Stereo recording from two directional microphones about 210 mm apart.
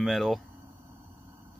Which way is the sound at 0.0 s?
Centre (ahead or behind).